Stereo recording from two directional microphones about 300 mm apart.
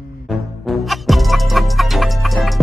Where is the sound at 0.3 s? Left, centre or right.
Centre.